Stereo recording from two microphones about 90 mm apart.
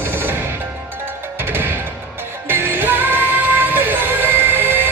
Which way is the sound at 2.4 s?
25° right (ahead or behind).